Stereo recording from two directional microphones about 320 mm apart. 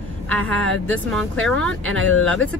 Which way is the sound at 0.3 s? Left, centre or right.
Centre.